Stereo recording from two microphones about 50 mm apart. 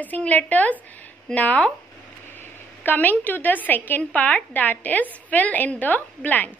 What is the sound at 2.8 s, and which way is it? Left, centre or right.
A woman's voice, left.